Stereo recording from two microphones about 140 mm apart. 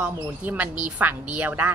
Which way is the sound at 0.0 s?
10° right (ahead or behind).